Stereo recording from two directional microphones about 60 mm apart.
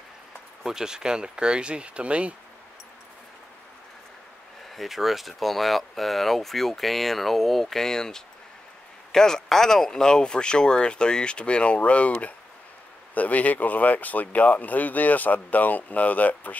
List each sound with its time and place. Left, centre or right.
0.7 s speech: centre
4.7 s speech: centre; by 16.5 s left